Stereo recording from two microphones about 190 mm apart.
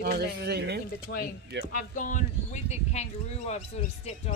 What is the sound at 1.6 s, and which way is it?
Speech, 45° left (ahead or behind).